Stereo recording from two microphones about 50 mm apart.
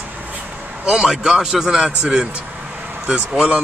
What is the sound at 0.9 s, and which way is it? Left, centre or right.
A man's voice, centre.